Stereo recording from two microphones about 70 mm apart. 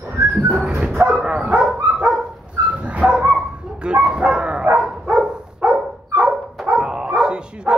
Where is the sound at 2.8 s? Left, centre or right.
Centre.